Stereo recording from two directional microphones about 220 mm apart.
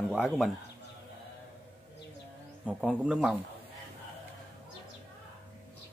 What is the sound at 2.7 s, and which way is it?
Speech, 5° right (ahead or behind).